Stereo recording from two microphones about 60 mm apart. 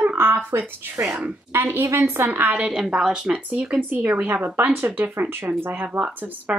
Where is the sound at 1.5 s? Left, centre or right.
Right.